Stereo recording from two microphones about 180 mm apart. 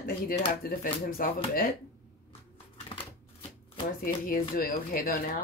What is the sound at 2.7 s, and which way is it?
Shuffling cards, 30° left (ahead or behind).